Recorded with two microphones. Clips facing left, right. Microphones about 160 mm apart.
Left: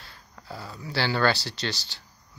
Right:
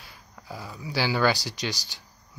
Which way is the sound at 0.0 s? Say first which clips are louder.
Even; 10° right (ahead or behind).